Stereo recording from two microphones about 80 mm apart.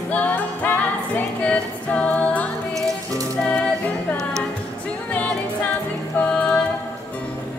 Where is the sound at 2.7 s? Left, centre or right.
Right.